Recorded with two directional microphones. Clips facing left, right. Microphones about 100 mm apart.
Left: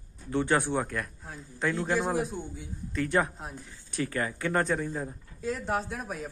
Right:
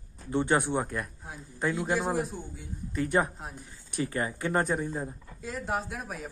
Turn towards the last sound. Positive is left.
turn(degrees=0)  # may be behind; listen again after turning